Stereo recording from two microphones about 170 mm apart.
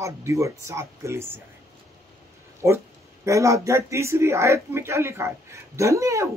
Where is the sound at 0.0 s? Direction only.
15° right (ahead or behind).